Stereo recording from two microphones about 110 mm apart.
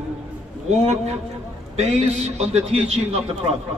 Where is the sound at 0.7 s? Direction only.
80° right.